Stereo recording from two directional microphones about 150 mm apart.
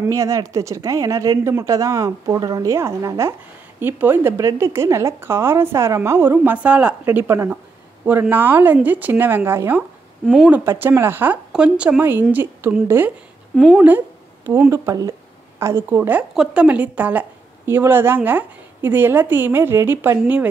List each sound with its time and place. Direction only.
0.1 s speech: 20° right (ahead or behind)
13.6 s speech: centre (ahead or behind)
13.8 s a woman's voice: 15° right (ahead or behind)